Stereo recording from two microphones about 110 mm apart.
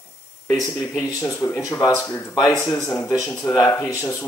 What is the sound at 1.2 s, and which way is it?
Speech, 20° left (ahead or behind).